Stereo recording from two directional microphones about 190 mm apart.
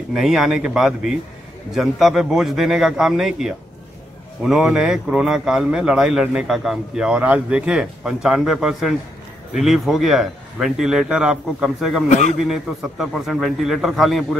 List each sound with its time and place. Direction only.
0.1 s a man's voice: centre (ahead or behind)
12.1 s a man's voice: 40° left (ahead or behind)
12.4 s a man's voice: centre (ahead or behind)